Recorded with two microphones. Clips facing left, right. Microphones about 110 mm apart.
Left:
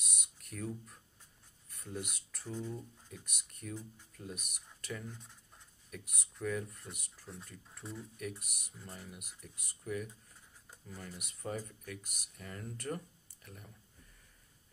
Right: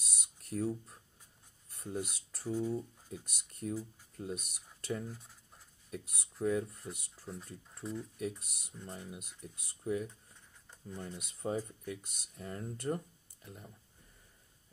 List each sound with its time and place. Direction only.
0.0 s a sound: 30° right (ahead or behind)
1.7 s speech: 25° right (ahead or behind)
5.1 s speech: 5° right (ahead or behind)
5.9 s speech: 30° right (ahead or behind)
7.8 s speech: centre (ahead or behind)
8.2 s speech: 25° right (ahead or behind)
8.7 s speech: centre (ahead or behind)
9.1 s speech: 25° right (ahead or behind)